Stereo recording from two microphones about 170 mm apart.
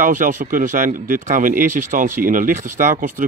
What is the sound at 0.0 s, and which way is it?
Speech, 50° right (ahead or behind).